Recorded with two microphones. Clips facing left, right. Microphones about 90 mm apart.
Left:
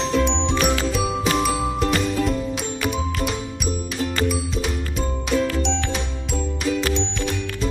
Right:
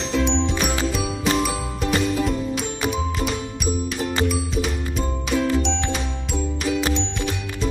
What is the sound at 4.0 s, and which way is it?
Music, 25° right (ahead or behind).